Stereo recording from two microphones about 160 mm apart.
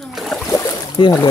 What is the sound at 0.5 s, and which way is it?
Boat, 25° left (ahead or behind).